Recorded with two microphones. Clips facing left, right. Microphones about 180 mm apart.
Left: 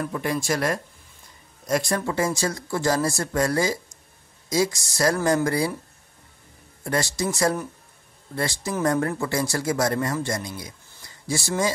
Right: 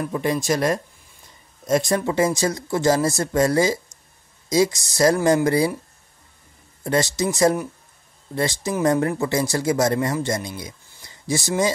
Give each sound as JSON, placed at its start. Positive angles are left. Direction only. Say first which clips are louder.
{"t": 0.0, "sound": "speech", "louder": "right 3 dB", "side_deg": -20}
{"t": 6.8, "sound": "speech", "louder": "right 4 dB", "side_deg": -20}